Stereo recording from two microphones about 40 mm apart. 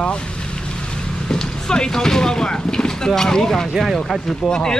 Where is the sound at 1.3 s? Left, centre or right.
Centre.